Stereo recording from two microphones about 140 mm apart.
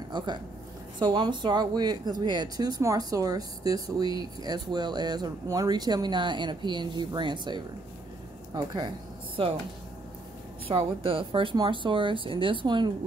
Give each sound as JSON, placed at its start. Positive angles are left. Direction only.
{"t": 0.1, "sound": "speech", "side_deg": -35}
{"t": 9.4, "sound": "speech", "side_deg": -40}
{"t": 10.7, "sound": "speech", "side_deg": -40}